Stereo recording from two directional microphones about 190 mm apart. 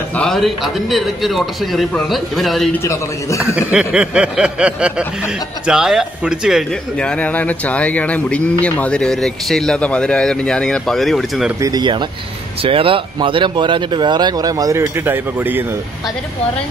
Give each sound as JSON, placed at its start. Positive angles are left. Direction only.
{"t": 0.1, "sound": "speech", "side_deg": 5}
{"t": 2.8, "sound": "a man's voice", "side_deg": 15}
{"t": 3.5, "sound": "speech", "side_deg": -5}
{"t": 11.6, "sound": "speech", "side_deg": -20}